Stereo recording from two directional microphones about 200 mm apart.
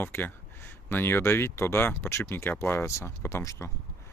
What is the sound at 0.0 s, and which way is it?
Speech, 10° left (ahead or behind).